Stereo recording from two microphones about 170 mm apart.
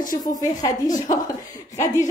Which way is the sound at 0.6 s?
20° left (ahead or behind).